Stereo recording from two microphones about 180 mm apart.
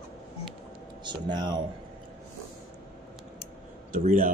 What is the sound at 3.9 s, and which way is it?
Speech, 45° right (ahead or behind).